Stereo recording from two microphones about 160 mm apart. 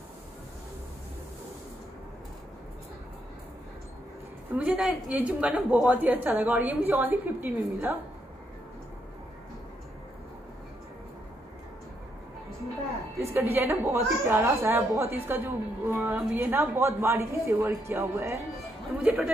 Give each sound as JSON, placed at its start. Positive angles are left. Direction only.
{"t": 4.6, "sound": "a woman's voice", "side_deg": -5}
{"t": 13.2, "sound": "a woman's voice", "side_deg": -15}